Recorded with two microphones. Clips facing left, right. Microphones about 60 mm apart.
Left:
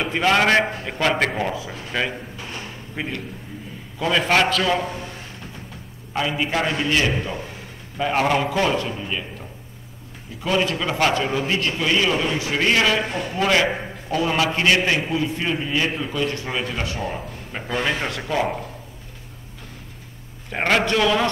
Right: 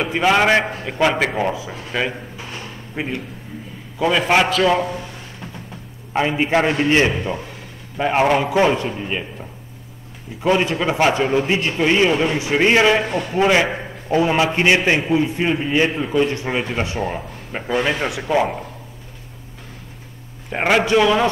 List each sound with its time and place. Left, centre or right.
0.0 s a man's voice: centre
3.0 s a man's voice: centre
6.1 s a man's voice: right; by 8.5 s centre
8.5 s a man's voice: right
10.4 s a man's voice: right
20.5 s a man's voice: centre